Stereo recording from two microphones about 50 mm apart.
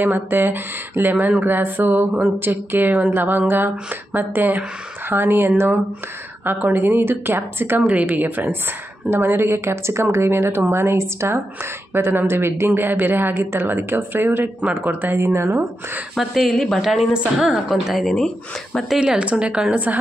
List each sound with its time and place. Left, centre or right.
0.0 s a woman's voice: right
6.4 s a woman's voice: right
7.8 s a woman's voice: right
16.2 s speech: centre
16.5 s speech: centre
16.8 s speech: centre
18.1 s speech: centre
18.9 s a woman's voice: centre